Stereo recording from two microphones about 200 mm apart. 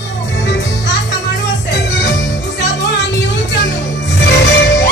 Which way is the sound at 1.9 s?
60° left (ahead or behind).